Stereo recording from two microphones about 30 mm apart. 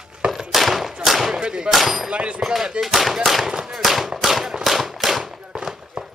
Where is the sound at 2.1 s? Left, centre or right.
Right.